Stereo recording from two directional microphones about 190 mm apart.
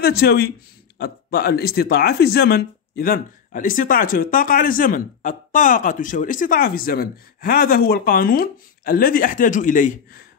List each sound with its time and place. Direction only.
0.0 s speech: 55° left (ahead or behind)